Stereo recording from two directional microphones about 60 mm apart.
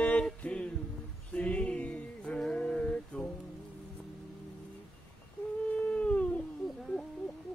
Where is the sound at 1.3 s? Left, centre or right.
Left.